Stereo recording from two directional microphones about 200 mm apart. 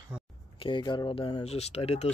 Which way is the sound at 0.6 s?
25° left (ahead or behind).